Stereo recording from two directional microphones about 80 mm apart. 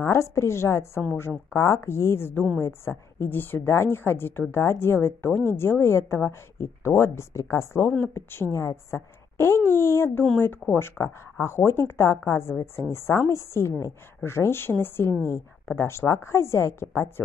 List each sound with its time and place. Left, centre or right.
0.0 s a woman's voice: left